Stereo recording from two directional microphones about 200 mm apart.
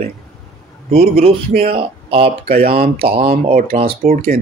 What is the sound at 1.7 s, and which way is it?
Speech, 25° right (ahead or behind).